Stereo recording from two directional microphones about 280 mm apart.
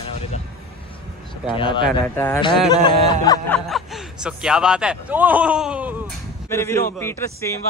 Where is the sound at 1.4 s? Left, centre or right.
Centre.